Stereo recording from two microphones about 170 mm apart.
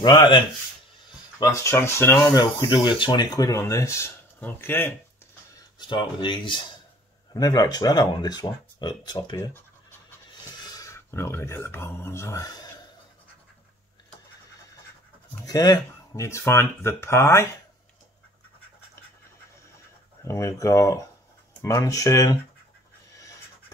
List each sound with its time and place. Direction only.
0.0 s speech: 25° left (ahead or behind)
1.4 s speech: 15° left (ahead or behind)
2.3 s speech: 25° left (ahead or behind)
5.5 s speech: 25° left (ahead or behind)
9.4 s scratch: 15° left (ahead or behind)
10.4 s speech: 20° left (ahead or behind)
15.4 s speech: 20° left (ahead or behind)
20.2 s speech: 20° left (ahead or behind)